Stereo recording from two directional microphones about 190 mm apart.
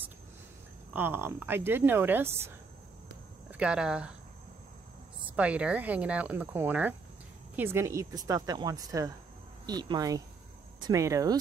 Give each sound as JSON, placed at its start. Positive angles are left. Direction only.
{"t": 0.9, "sound": "speech", "side_deg": -10}
{"t": 3.5, "sound": "speech", "side_deg": -5}
{"t": 5.3, "sound": "speech", "side_deg": -5}